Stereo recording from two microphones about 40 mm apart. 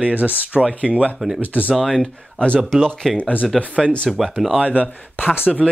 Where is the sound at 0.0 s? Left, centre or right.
Right.